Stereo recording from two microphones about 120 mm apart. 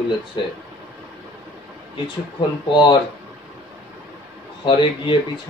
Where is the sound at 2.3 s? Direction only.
40° left (ahead or behind).